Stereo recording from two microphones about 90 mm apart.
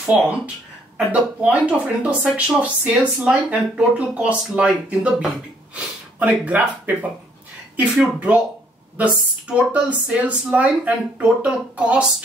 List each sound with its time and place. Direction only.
0.0 s speech: 15° right (ahead or behind)